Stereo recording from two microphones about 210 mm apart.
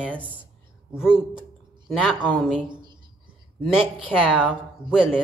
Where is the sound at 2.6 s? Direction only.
20° right (ahead or behind).